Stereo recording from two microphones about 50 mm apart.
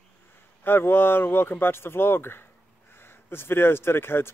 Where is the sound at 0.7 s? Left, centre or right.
Left.